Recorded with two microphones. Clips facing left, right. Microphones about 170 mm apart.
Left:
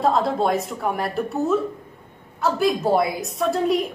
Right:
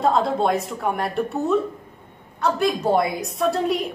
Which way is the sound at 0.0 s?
Centre (ahead or behind).